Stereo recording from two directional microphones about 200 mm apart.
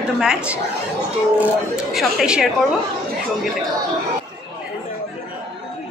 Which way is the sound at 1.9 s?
5° right (ahead or behind).